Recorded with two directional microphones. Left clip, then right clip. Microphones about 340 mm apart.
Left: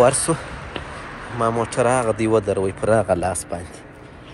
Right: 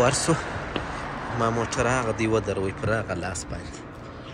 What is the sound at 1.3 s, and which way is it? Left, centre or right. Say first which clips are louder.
A man's voice: left 5 dB; centre.